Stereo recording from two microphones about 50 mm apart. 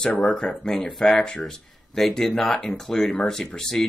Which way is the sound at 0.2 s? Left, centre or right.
Centre.